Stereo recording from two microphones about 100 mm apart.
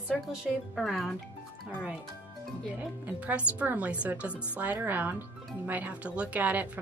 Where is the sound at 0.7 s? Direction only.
Centre (ahead or behind).